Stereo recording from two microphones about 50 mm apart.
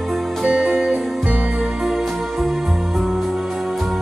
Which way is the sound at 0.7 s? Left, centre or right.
Centre.